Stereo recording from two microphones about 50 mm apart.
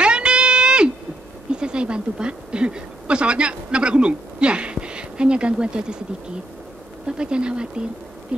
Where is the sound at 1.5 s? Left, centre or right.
Centre.